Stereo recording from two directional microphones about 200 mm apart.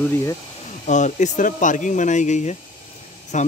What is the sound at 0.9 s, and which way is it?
Speech, 35° left (ahead or behind).